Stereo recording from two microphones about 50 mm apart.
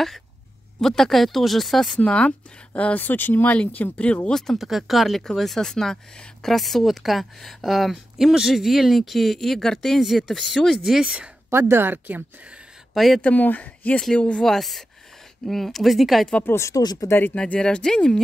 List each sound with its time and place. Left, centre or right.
0.7 s speech: centre
2.0 s speech: left
3.5 s speech: left
4.3 s speech: centre
4.6 s speech: centre
11.5 s a woman's voice: right
12.9 s speech: centre
13.2 s speech: left
14.4 s speech: centre
16.5 s speech: left
17.4 s speech: centre